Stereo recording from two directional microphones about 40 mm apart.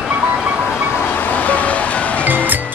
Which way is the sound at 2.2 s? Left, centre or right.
Right.